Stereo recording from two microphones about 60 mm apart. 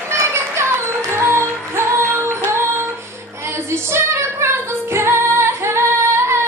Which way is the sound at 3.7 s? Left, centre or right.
Right.